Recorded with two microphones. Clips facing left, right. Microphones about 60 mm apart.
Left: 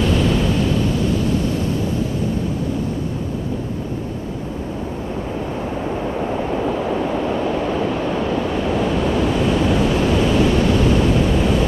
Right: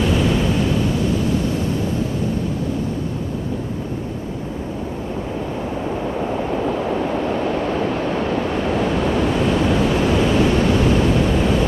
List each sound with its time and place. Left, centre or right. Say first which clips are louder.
0.0 s waves: even; centre
5.9 s vehicle: even; centre
7.7 s waves: even; right
8.8 s waves: even; centre